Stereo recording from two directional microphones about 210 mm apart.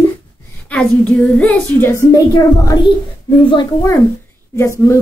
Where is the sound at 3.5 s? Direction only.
20° left (ahead or behind).